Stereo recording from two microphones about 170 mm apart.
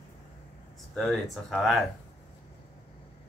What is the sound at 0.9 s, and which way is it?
Speech, centre (ahead or behind).